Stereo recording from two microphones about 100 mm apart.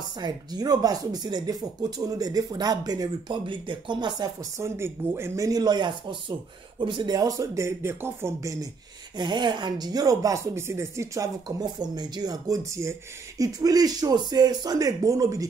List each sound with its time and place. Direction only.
0.2 s speech: 40° right (ahead or behind)
3.4 s speech: 55° right (ahead or behind)
4.6 s speech: 25° right (ahead or behind)
9.1 s speech: 45° right (ahead or behind); by 11.2 s 30° right (ahead or behind)
11.4 s speech: 40° right (ahead or behind)